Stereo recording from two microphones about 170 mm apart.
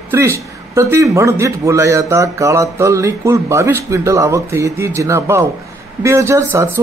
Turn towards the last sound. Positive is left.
turn(degrees=-15)  # may be behind; listen again after turning